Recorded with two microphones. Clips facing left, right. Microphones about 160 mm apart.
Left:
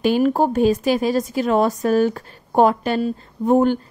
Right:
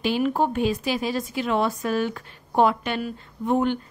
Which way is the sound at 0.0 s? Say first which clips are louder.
Left 6 dB; 45° left (ahead or behind).